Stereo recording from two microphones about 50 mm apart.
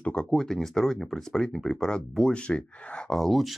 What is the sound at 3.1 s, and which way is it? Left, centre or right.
Speech, centre.